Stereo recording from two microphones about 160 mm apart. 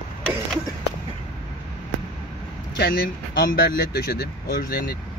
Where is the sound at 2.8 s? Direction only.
65° left (ahead or behind).